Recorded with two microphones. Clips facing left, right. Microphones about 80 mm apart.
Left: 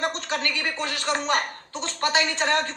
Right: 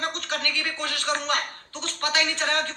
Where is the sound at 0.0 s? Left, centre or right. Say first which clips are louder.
Left 2 dB; left.